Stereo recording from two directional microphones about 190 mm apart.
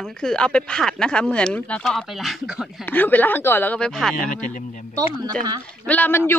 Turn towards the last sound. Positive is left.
turn(degrees=10)  # may be behind; listen again after turning